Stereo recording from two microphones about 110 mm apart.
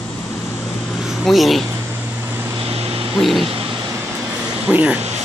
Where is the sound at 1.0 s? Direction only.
Centre (ahead or behind).